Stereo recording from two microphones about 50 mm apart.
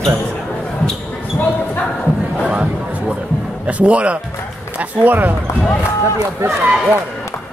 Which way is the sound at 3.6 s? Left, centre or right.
Right.